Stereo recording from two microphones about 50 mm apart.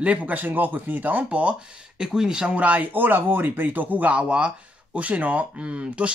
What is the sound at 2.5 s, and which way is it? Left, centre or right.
Speech, right.